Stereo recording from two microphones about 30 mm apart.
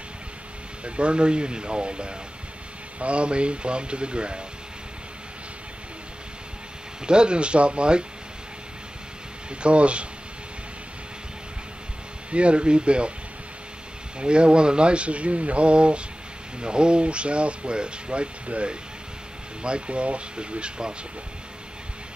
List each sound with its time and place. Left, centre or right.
0.8 s speech: right
7.1 s speech: right
9.5 s speech: right
12.3 s speech: right
14.2 s speech: right